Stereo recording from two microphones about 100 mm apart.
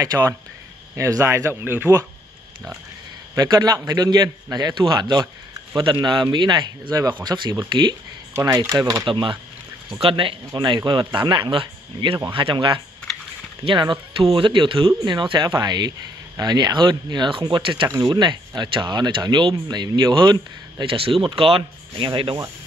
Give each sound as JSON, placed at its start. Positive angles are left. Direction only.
{"t": 0.0, "sound": "a man's voice", "side_deg": -30}
{"t": 3.3, "sound": "a man's voice", "side_deg": -40}
{"t": 5.2, "sound": "a sound", "side_deg": -35}
{"t": 5.9, "sound": "speech", "side_deg": -50}
{"t": 8.3, "sound": "a man's voice", "side_deg": -30}
{"t": 9.0, "sound": "speech", "side_deg": -55}
{"t": 17.8, "sound": "speech", "side_deg": -40}
{"t": 20.9, "sound": "speech", "side_deg": -65}